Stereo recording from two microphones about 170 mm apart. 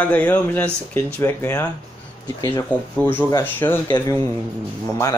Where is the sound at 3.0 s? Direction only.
15° left (ahead or behind).